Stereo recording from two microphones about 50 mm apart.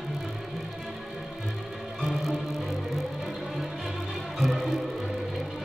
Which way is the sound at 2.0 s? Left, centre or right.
Centre.